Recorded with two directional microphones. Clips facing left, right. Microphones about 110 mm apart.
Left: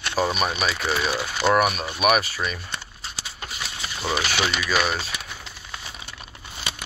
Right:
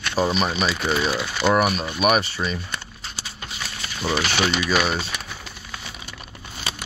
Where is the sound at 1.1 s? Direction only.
10° left (ahead or behind).